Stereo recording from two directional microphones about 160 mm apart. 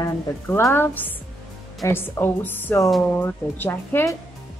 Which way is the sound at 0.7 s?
10° left (ahead or behind).